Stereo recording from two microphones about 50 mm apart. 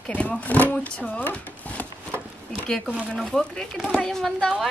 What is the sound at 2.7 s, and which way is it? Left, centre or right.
A woman's voice, centre.